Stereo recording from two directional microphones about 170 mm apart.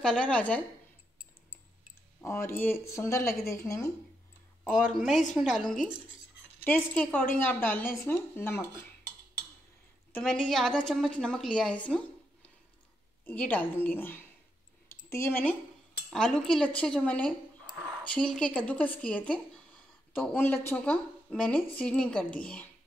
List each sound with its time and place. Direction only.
0.0 s speech: 5° left (ahead or behind)
2.2 s speech: 15° left (ahead or behind)
4.9 s a woman's voice: centre (ahead or behind)
10.1 s a woman's voice: 5° left (ahead or behind)
13.2 s speech: 10° left (ahead or behind)
14.9 s a sound: 15° left (ahead or behind)
16.1 s a woman's voice: 5° left (ahead or behind)